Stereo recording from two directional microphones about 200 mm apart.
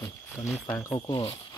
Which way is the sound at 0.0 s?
10° left (ahead or behind).